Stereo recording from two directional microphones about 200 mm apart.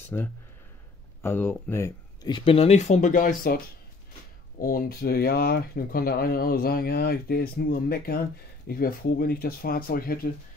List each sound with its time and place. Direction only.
0.1 s speech: 10° left (ahead or behind); by 3.5 s 40° left (ahead or behind)
4.6 s speech: 45° left (ahead or behind)